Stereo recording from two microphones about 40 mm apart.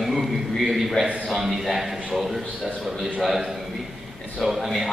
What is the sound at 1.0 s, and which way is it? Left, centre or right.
Speech, right.